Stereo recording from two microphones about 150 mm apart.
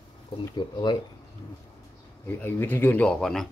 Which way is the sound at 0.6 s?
30° left (ahead or behind).